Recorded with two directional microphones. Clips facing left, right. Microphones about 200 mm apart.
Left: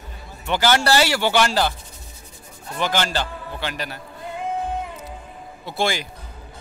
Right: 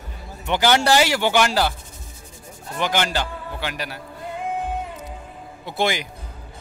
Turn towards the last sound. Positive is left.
turn(degrees=-15)  # may be behind; listen again after turning